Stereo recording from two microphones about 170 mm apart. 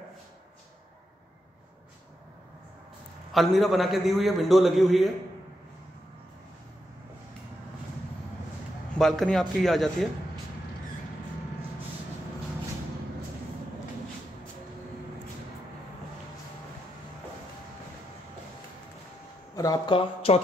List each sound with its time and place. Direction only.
3.3 s a man's voice: centre (ahead or behind)
8.9 s a man's voice: centre (ahead or behind)
19.5 s speech: 20° left (ahead or behind)